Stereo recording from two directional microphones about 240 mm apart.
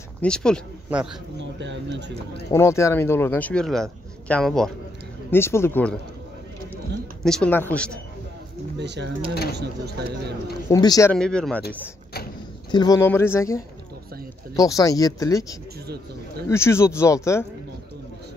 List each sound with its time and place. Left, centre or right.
0.2 s speech: centre
1.4 s speech: right
2.5 s a man's voice: centre
7.2 s speech: centre
8.7 s speech: right
10.7 s a man's voice: centre
12.7 s a man's voice: centre
16.4 s a man's voice: centre